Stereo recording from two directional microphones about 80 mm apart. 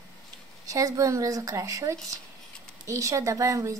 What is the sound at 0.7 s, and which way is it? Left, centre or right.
A woman's voice, right.